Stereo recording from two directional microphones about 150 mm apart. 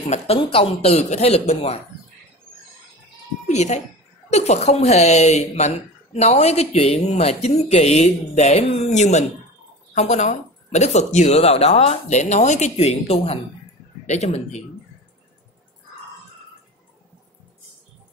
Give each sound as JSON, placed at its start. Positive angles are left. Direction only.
{"t": 0.1, "sound": "a woman's voice", "side_deg": 40}
{"t": 3.4, "sound": "a woman's voice", "side_deg": 50}